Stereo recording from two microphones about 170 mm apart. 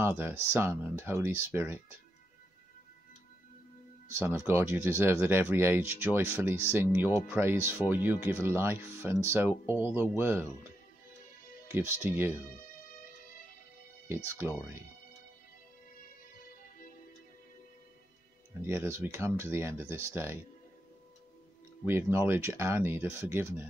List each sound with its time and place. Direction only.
0.0 s speech: 15° right (ahead or behind)
4.1 s speech: 15° right (ahead or behind)
11.7 s speech: 15° right (ahead or behind)
14.0 s speech: 15° right (ahead or behind)
18.6 s speech: 15° right (ahead or behind)
21.8 s speech: 15° right (ahead or behind)